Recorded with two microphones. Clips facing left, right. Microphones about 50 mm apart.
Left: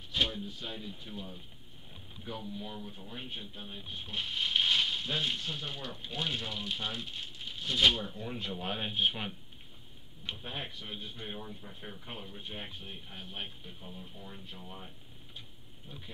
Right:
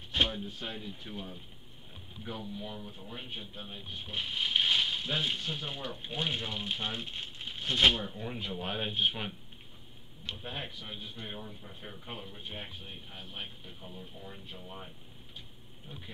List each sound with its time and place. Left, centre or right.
0.1 s a sound: right
1.1 s speech: right
2.2 s speech: centre; by 7.9 s right
7.9 s speech: centre
8.3 s speech: centre
10.4 s speech: centre
14.5 s speech: centre